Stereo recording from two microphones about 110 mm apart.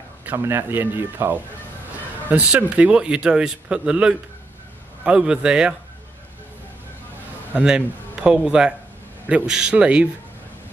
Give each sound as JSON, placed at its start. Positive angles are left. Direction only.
{"t": 0.2, "sound": "speech", "side_deg": -20}
{"t": 7.6, "sound": "a man's voice", "side_deg": -5}